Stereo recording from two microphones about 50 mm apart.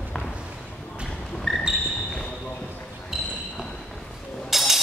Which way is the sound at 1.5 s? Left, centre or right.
Centre.